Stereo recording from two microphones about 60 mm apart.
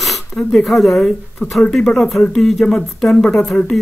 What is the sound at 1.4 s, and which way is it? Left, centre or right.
Speech, left.